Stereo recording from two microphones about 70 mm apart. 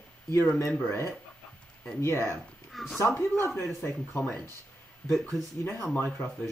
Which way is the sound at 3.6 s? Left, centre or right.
Left.